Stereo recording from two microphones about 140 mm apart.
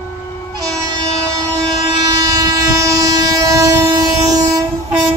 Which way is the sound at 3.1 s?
25° right (ahead or behind).